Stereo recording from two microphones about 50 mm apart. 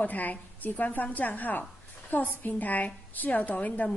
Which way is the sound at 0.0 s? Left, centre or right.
Left.